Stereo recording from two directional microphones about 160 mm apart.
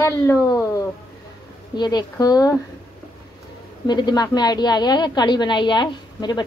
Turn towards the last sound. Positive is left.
turn(degrees=25)  # may be behind; listen again after turning